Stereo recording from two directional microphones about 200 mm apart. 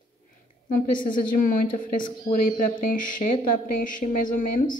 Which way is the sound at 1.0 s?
40° left (ahead or behind).